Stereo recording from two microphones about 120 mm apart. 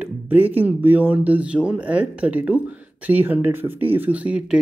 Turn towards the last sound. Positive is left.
turn(degrees=-10)  # may be behind; listen again after turning